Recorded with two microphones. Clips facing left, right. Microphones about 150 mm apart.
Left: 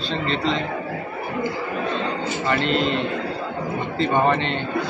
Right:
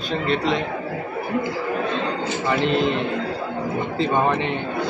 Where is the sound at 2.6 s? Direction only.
75° left (ahead or behind).